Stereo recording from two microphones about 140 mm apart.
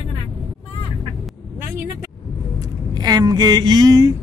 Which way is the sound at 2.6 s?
30° right (ahead or behind).